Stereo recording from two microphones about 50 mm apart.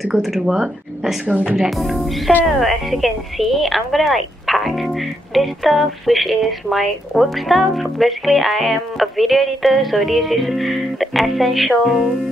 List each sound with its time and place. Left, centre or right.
0.0 s a woman's voice: centre
1.2 s speech: right
1.6 s a woman's voice: centre